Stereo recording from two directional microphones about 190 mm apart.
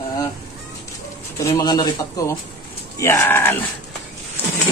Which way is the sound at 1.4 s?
20° left (ahead or behind).